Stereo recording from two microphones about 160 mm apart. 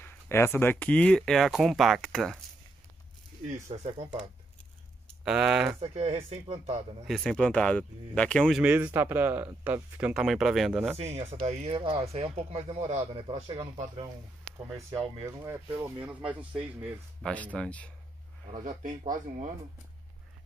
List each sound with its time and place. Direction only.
0.0 s speech: 15° left (ahead or behind)
3.6 s speech: 45° right (ahead or behind)
5.2 s speech: 5° right (ahead or behind)
5.8 s speech: 40° right (ahead or behind)
7.1 s speech: centre (ahead or behind)
11.0 s speech: 40° right (ahead or behind)
14.7 s speech: 20° right (ahead or behind)
17.2 s speech: 10° left (ahead or behind)
18.5 s speech: 55° right (ahead or behind)